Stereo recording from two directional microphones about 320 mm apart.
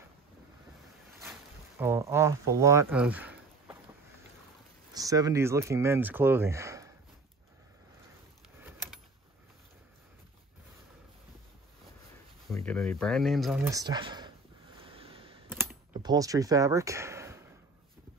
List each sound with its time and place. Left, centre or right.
1.2 s a sound: centre
4.9 s speech: centre
12.4 s speech: centre
13.7 s speech: centre
14.8 s computer keyboard: centre
16.0 s speech: centre